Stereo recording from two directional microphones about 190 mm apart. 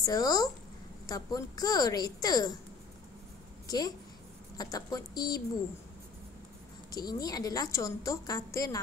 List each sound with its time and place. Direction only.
0.0 s a woman's voice: 20° left (ahead or behind)
3.6 s a woman's voice: 20° left (ahead or behind)
6.9 s a woman's voice: 20° left (ahead or behind)